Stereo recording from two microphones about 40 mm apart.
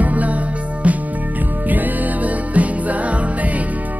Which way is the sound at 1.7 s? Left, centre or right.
Right.